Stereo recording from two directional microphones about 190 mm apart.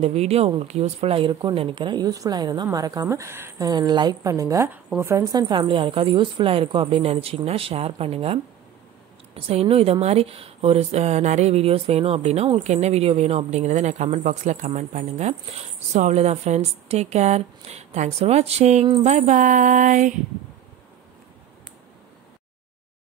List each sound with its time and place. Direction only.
0.0 s speech: 35° right (ahead or behind)